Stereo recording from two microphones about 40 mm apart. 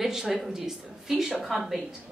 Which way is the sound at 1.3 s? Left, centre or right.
Centre.